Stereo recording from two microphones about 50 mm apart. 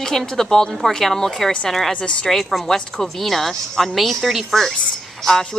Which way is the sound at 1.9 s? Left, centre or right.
Left.